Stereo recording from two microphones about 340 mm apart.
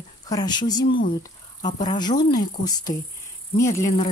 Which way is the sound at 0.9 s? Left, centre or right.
Left.